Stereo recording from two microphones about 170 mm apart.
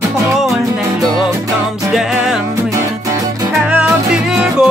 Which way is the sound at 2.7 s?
20° right (ahead or behind).